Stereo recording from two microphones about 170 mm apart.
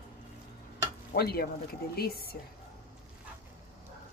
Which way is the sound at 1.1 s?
70° left (ahead or behind).